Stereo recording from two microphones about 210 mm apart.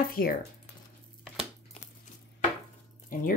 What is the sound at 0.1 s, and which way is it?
Speech, 45° left (ahead or behind).